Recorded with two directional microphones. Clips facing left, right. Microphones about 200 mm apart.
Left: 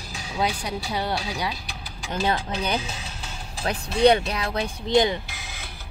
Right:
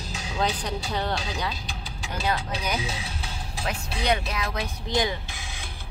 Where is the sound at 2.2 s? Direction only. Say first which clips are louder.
Left 2 dB; 30° left (ahead or behind).